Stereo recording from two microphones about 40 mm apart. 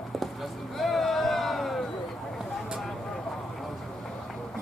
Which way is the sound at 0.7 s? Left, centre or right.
Centre.